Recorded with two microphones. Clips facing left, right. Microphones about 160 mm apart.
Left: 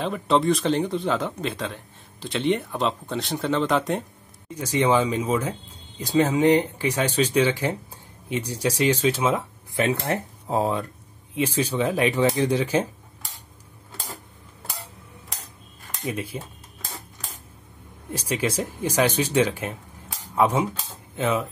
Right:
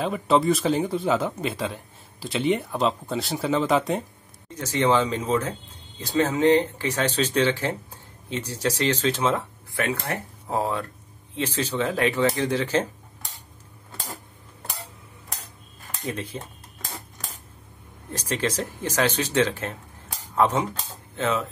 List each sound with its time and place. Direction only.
0.0 s speech: centre (ahead or behind)
4.5 s speech: 10° left (ahead or behind)
16.0 s speech: 10° left (ahead or behind)
18.1 s speech: 10° left (ahead or behind)